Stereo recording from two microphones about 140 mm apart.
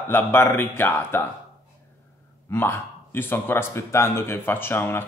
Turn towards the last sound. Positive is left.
turn(degrees=15)  # may be behind; listen again after turning